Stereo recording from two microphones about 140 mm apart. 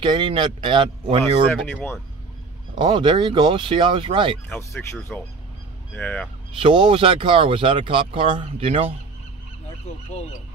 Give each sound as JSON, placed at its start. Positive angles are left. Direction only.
{"t": 0.0, "sound": "speech", "side_deg": -35}
{"t": 1.5, "sound": "speech", "side_deg": 15}
{"t": 2.7, "sound": "speech", "side_deg": -35}
{"t": 4.5, "sound": "speech", "side_deg": 15}
{"t": 6.6, "sound": "speech", "side_deg": -35}